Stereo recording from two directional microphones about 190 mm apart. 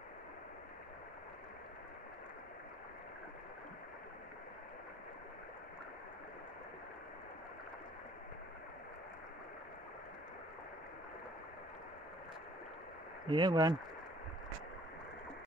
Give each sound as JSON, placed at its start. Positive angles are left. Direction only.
{"t": 13.3, "sound": "speech", "side_deg": -25}